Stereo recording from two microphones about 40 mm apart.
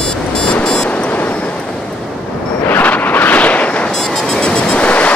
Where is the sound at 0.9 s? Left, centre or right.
Left.